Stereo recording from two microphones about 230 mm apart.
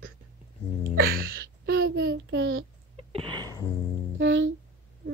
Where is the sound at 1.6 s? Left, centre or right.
Right.